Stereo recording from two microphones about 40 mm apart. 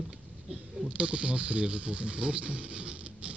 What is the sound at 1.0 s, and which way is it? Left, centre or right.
Speech, right.